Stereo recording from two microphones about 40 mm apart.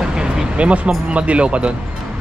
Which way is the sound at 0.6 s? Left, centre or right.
Right.